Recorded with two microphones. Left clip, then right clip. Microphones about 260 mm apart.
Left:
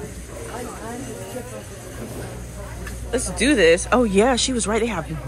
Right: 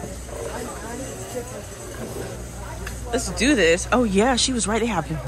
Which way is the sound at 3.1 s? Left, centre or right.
Centre.